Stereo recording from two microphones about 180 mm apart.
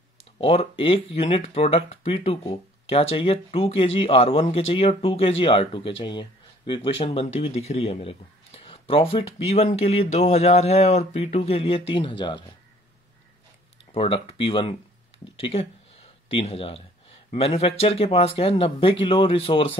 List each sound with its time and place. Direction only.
0.4 s speech: 30° left (ahead or behind)
13.9 s speech: 30° left (ahead or behind)